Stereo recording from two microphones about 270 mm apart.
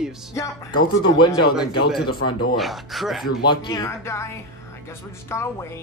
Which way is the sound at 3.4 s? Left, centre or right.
Centre.